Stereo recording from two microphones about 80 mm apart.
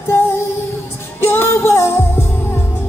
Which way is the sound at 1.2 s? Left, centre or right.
Left.